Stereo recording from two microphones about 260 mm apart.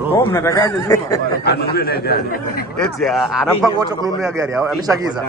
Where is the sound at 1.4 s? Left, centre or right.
Left.